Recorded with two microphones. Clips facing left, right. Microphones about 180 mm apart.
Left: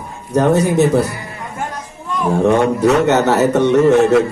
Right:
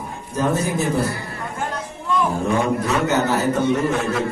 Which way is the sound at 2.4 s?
70° left (ahead or behind).